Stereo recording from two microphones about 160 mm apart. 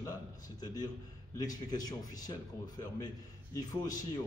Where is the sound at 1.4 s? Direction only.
25° left (ahead or behind).